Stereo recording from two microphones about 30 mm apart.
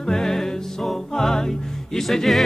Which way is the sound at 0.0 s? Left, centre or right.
Centre.